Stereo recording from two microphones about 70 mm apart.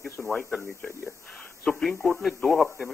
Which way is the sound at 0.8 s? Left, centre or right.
Left.